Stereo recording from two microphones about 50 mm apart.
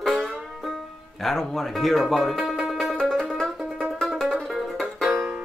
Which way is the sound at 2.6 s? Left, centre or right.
Centre.